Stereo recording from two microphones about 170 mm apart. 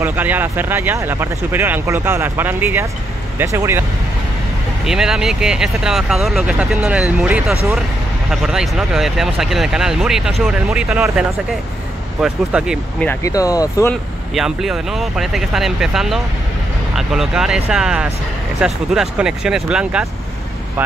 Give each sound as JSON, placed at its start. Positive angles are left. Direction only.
{"t": 0.0, "sound": "speech", "side_deg": -10}
{"t": 4.8, "sound": "speech", "side_deg": -5}
{"t": 13.0, "sound": "speech", "side_deg": 15}
{"t": 14.3, "sound": "speech", "side_deg": 0}